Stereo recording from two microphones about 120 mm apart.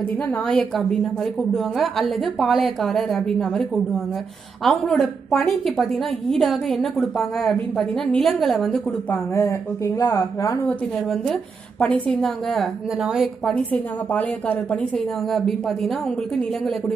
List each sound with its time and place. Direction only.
0.5 s a woman's voice: 5° left (ahead or behind)
9.3 s speech: 25° left (ahead or behind)
10.7 s a woman's voice: centre (ahead or behind)
13.7 s a woman's voice: 15° left (ahead or behind)
15.3 s a woman's voice: centre (ahead or behind)